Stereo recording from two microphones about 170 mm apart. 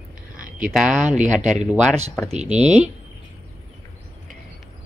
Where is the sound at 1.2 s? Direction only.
45° right (ahead or behind).